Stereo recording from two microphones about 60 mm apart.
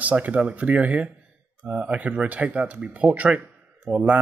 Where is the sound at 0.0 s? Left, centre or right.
Right.